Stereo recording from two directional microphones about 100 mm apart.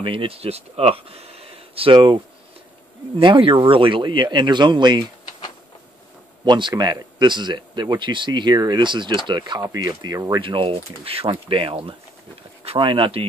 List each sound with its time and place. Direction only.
0.0 s speech: 65° right (ahead or behind)
3.2 s speech: 55° right (ahead or behind)
6.4 s speech: 45° right (ahead or behind)
10.4 s speech: 60° right (ahead or behind)